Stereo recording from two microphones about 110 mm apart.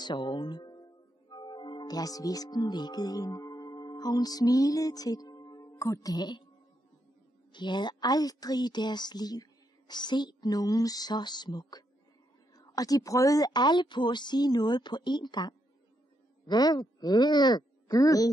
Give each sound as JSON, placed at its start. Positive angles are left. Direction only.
{"t": 0.0, "sound": "speech", "side_deg": 45}
{"t": 7.5, "sound": "a woman's voice", "side_deg": 45}